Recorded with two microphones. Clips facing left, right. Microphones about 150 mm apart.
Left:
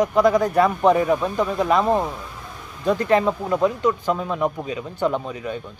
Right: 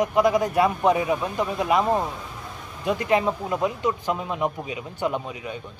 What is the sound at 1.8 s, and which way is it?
Speech, 15° left (ahead or behind).